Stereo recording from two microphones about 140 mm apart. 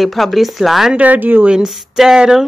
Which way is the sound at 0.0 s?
Centre (ahead or behind).